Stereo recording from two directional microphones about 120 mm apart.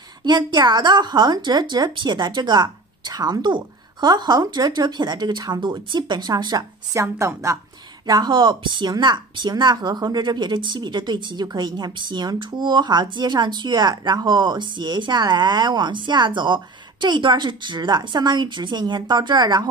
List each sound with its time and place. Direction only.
0.2 s speech: 35° right (ahead or behind)
8.1 s speech: 40° right (ahead or behind)